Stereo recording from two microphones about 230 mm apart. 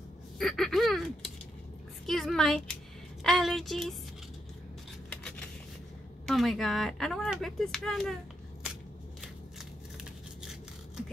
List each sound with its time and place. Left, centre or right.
0.4 s a sound: centre
3.3 s speech: centre
5.1 s scissors: centre
6.2 s speech: centre